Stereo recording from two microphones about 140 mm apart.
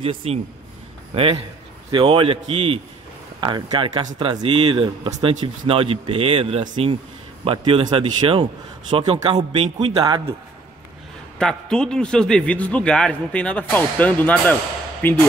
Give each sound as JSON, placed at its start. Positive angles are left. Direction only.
{"t": 0.0, "sound": "a man's voice", "side_deg": -45}
{"t": 3.3, "sound": "a man's voice", "side_deg": -35}
{"t": 11.3, "sound": "a man's voice", "side_deg": 5}